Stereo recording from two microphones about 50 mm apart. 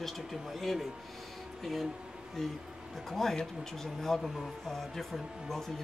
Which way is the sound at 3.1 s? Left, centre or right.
Centre.